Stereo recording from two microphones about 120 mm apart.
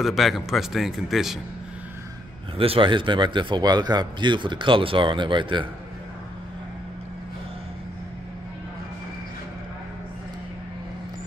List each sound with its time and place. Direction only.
0.0 s speech: centre (ahead or behind)
2.5 s a man's voice: 50° right (ahead or behind)